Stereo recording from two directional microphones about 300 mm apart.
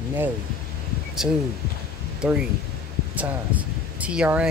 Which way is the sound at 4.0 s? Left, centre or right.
Centre.